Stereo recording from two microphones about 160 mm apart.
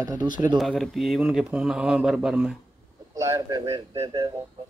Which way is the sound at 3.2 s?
20° right (ahead or behind).